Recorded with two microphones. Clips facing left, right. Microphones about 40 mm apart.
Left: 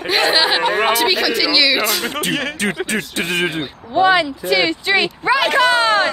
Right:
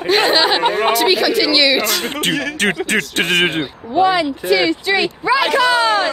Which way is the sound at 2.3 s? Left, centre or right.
Left.